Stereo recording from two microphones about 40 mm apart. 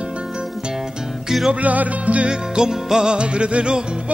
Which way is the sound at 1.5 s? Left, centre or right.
Right.